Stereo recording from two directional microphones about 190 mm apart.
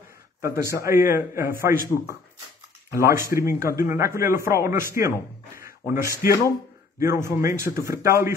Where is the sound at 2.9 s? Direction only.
15° right (ahead or behind).